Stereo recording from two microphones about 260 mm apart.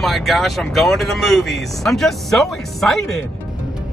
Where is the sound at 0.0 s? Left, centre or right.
Centre.